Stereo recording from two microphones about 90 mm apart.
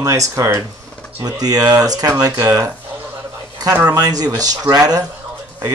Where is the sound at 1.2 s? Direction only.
45° right (ahead or behind).